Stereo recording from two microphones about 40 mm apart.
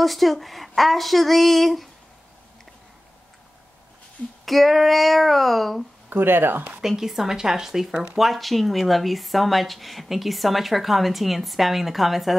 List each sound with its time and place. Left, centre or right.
0.0 s speech: centre
4.5 s speech: centre
6.0 s speech: right
6.8 s speech: centre
8.2 s speech: centre